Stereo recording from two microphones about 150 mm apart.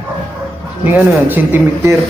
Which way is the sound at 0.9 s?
10° right (ahead or behind).